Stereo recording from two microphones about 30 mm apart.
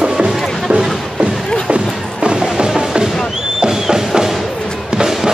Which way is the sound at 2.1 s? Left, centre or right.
Right.